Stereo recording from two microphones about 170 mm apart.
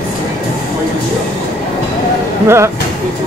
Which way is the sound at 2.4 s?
15° right (ahead or behind).